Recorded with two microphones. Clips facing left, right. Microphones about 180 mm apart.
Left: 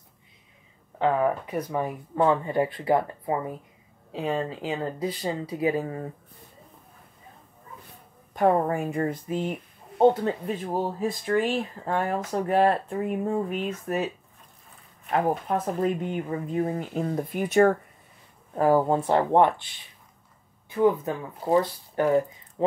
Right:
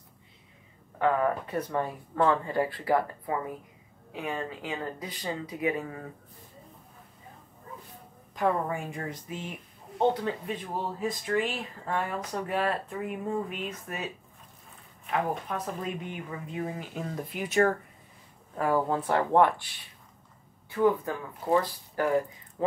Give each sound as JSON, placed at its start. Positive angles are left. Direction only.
{"t": 0.9, "sound": "speech", "side_deg": 20}
{"t": 8.4, "sound": "speech", "side_deg": 55}
{"t": 15.0, "sound": "speech", "side_deg": 40}
{"t": 17.1, "sound": "speech", "side_deg": 50}
{"t": 18.5, "sound": "speech", "side_deg": 35}
{"t": 20.7, "sound": "speech", "side_deg": 20}